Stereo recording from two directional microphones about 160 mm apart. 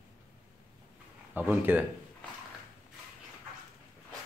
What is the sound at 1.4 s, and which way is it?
Speech, 10° right (ahead or behind).